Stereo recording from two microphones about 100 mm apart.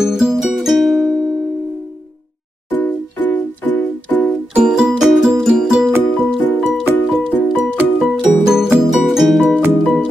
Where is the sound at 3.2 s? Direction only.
20° left (ahead or behind).